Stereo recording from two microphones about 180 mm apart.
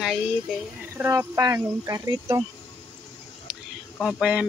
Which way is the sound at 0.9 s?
15° right (ahead or behind).